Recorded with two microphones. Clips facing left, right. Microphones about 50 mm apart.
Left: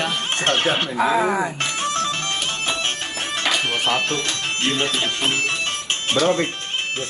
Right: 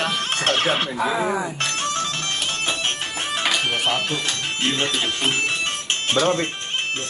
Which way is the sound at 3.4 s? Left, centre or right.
Centre.